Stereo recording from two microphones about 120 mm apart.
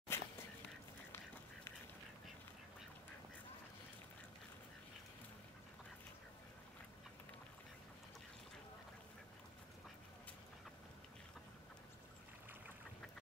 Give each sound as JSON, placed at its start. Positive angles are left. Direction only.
{"t": 0.1, "sound": "duck", "side_deg": 20}